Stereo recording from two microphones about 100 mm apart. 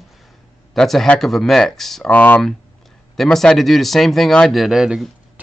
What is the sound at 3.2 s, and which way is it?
Speech, 5° left (ahead or behind).